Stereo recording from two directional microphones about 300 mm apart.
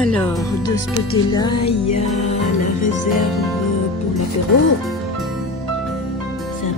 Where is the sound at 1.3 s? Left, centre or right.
Centre.